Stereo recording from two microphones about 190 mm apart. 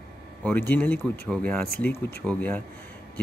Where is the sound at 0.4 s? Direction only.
10° left (ahead or behind).